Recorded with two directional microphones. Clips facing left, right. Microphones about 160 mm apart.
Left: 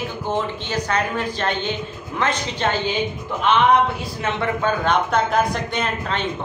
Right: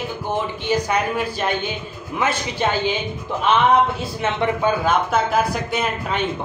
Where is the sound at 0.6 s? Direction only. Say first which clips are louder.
Right 3 dB; 10° right (ahead or behind).